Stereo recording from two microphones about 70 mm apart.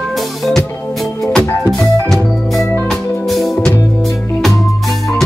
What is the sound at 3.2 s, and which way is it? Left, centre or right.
Music, centre.